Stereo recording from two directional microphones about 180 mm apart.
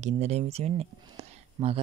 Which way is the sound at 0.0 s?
35° right (ahead or behind).